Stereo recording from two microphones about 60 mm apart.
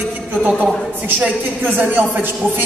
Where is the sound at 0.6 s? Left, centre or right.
Right.